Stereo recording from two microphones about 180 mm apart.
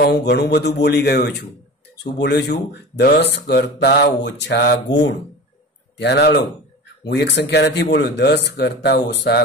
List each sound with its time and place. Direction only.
0.0 s speech: 65° left (ahead or behind)
5.9 s speech: 70° left (ahead or behind)